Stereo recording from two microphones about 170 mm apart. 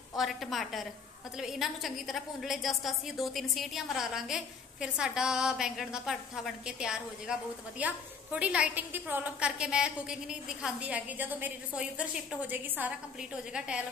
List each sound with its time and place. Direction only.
0.1 s a woman's voice: centre (ahead or behind)